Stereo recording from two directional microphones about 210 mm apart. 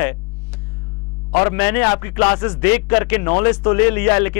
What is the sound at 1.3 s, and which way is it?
Speech, 15° left (ahead or behind).